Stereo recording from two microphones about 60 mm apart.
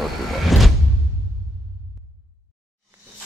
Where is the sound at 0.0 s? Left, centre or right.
Centre.